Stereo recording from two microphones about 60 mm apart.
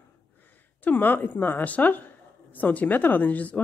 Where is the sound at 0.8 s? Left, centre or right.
Left.